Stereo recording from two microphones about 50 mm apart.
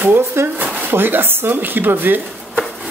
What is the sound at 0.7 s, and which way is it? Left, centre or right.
Speech, right.